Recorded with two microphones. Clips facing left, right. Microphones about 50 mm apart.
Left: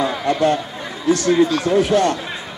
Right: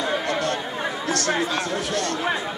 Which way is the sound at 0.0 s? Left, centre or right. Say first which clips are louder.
Left 6 dB; left.